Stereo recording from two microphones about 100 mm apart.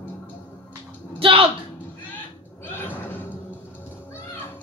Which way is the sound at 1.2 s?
65° right (ahead or behind).